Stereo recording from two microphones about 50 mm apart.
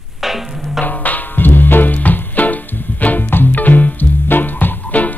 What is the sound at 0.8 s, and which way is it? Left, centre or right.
Music, left.